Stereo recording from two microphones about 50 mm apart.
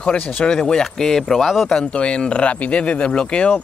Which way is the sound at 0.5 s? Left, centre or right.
Centre.